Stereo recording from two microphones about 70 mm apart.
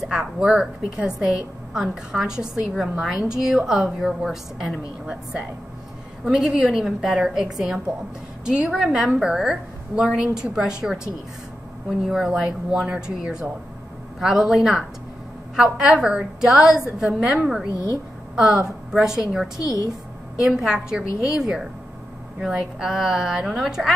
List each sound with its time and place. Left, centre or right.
0.0 s a woman's voice: centre
17.7 s a woman's voice: left
18.3 s a woman's voice: centre